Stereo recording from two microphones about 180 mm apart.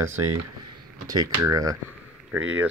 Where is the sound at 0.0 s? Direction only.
15° right (ahead or behind).